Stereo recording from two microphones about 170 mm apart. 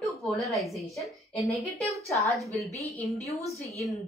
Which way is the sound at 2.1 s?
20° right (ahead or behind).